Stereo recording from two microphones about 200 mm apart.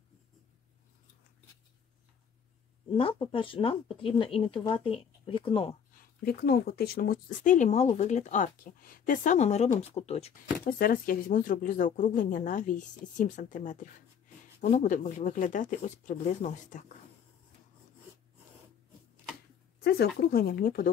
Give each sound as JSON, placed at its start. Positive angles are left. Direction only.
{"t": 3.0, "sound": "speech", "side_deg": 25}
{"t": 5.9, "sound": "speech", "side_deg": 50}
{"t": 10.6, "sound": "speech", "side_deg": 45}
{"t": 19.8, "sound": "speech", "side_deg": 50}